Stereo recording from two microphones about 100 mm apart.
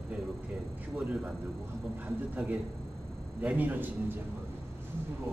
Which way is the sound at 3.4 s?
15° right (ahead or behind).